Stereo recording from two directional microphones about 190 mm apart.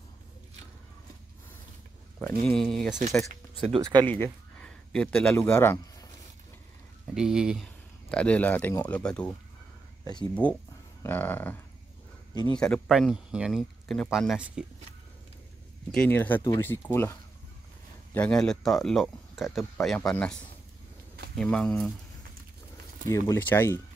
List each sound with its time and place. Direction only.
2.1 s speech: 5° left (ahead or behind)
3.8 s speech: 20° right (ahead or behind)
4.1 s speech: 5° left (ahead or behind)
7.2 s speech: 5° right (ahead or behind)
10.3 s speech: 10° left (ahead or behind)
15.9 s speech: 5° left (ahead or behind)
21.4 s speech: 5° left (ahead or behind)
23.0 s speech: 15° left (ahead or behind)